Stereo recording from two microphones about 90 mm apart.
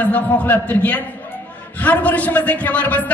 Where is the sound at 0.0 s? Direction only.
15° left (ahead or behind).